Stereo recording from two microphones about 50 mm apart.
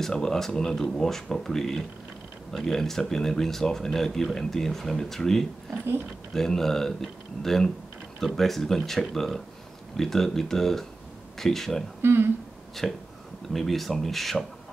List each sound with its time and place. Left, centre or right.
0.0 s speech: centre
12.0 s speech: right
12.8 s speech: centre